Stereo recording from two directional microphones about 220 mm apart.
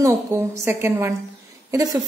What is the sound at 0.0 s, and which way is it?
A woman's voice, 10° right (ahead or behind).